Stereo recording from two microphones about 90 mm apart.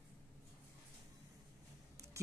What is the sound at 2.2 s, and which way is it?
Music, 35° right (ahead or behind).